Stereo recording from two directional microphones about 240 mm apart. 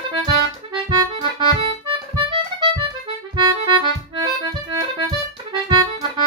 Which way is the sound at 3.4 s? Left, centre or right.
Centre.